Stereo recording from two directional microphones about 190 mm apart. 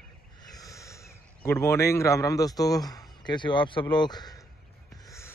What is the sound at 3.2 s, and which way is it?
A man's voice, 25° left (ahead or behind).